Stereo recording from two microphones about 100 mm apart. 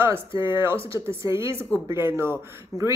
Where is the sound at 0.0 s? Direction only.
25° right (ahead or behind).